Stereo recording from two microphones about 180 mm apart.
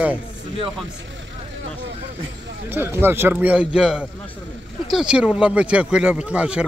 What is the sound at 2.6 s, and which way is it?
Speech, 10° right (ahead or behind).